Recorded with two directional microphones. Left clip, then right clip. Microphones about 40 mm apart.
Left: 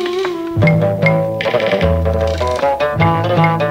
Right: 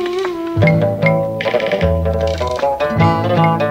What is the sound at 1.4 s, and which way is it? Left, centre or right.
Music, centre.